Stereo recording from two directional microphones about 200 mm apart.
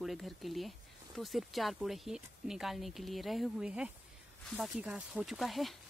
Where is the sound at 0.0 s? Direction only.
Centre (ahead or behind).